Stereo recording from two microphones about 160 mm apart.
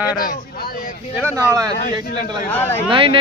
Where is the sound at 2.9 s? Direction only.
30° right (ahead or behind).